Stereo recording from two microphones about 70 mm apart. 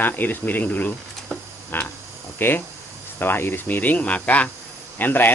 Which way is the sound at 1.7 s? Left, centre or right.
Left.